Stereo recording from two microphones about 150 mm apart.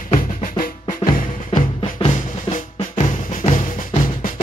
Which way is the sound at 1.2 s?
65° left (ahead or behind).